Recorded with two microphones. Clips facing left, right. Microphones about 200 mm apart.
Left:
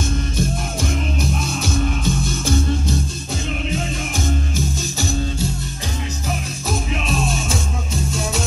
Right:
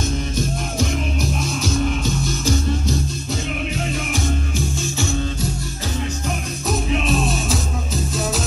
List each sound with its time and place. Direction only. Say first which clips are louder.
1.6 s music: right 2 dB; 55° left (ahead or behind)
4.9 s music: even; 35° left (ahead or behind)
6.7 s music: right 3 dB; centre (ahead or behind)